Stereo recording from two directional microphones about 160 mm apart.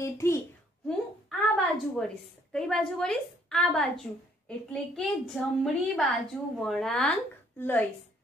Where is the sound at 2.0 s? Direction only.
5° left (ahead or behind).